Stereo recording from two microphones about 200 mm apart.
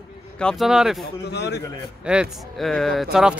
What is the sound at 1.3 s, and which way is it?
Speech, 55° left (ahead or behind).